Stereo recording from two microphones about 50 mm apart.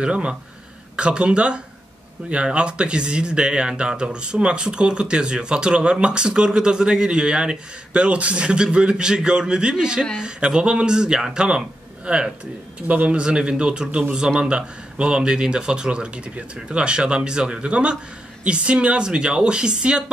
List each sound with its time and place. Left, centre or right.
0.0 s speech: right
12.8 s a man's voice: right
13.2 s speech: centre